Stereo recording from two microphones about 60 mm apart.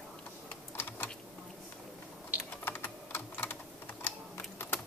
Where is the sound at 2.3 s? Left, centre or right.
Left.